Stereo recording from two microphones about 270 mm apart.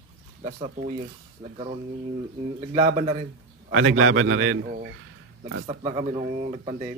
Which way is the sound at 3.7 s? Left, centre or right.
Right.